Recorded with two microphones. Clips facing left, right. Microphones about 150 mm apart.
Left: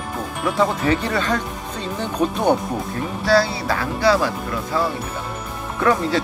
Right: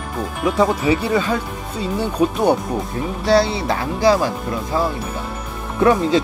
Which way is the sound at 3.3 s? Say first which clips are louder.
Right 2 dB; 20° right (ahead or behind).